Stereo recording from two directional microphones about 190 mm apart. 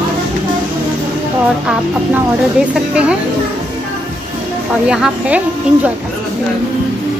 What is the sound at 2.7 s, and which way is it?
Speech, 5° right (ahead or behind).